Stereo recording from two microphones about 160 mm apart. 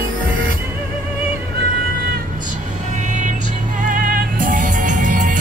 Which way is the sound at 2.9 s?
50° right (ahead or behind).